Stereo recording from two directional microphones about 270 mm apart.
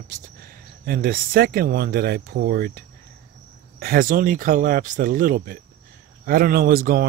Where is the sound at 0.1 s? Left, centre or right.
Right.